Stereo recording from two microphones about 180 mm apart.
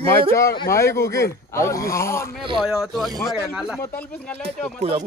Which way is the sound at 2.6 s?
Centre (ahead or behind).